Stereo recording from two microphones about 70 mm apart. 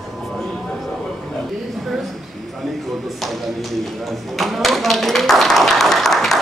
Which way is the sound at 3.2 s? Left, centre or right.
Centre.